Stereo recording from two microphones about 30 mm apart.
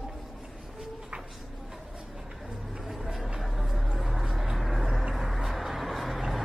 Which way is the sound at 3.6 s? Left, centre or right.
Centre.